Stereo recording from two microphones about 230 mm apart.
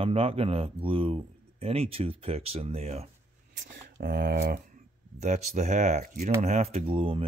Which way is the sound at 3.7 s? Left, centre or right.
Right.